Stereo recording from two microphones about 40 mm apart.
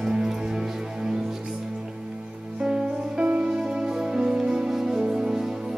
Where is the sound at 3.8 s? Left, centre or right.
Centre.